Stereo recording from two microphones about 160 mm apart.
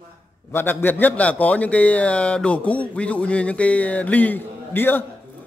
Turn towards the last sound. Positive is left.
turn(degrees=15)  # may be behind; listen again after turning